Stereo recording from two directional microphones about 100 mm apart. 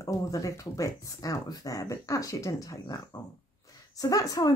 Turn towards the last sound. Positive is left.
turn(degrees=35)  # may be behind; listen again after turning